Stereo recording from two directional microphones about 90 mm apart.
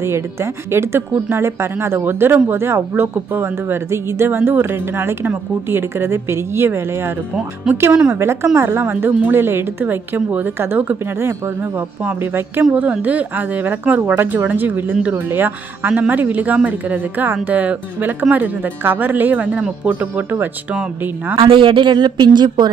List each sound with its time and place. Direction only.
0.0 s a woman's voice: 30° right (ahead or behind)
7.9 s a woman's voice: 15° right (ahead or behind)
8.2 s a woman's voice: 30° right (ahead or behind)
21.4 s speech: 70° right (ahead or behind)